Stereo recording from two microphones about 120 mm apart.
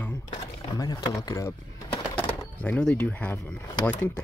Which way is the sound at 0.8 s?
30° left (ahead or behind).